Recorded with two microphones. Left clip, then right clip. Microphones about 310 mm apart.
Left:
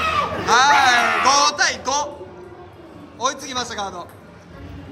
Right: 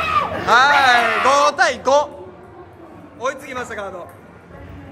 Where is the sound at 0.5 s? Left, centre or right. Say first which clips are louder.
Right 2 dB; centre.